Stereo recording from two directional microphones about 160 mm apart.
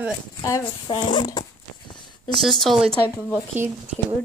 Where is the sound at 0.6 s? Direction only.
35° left (ahead or behind).